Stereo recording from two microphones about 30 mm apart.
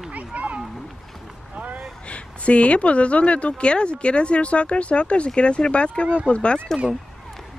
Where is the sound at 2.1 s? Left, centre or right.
Left.